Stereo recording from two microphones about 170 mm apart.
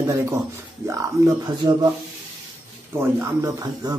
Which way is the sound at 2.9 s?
15° right (ahead or behind).